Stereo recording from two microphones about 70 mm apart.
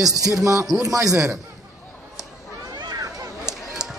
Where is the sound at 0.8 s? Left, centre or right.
Right.